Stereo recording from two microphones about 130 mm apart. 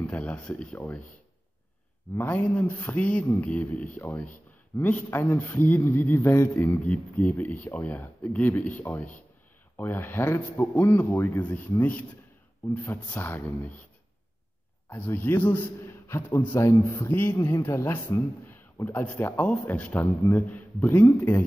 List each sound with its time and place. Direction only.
0.0 s a man's voice: 10° left (ahead or behind)
2.1 s a man's voice: 15° left (ahead or behind)
14.9 s a man's voice: 15° left (ahead or behind)